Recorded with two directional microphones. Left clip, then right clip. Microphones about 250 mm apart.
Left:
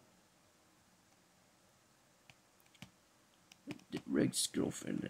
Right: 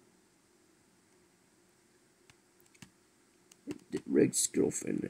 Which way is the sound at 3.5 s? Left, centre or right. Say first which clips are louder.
Right 6 dB; centre.